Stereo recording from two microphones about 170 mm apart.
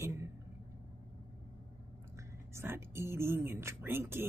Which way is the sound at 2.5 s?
15° right (ahead or behind).